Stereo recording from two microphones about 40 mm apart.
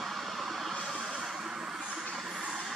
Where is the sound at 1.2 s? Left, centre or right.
Centre.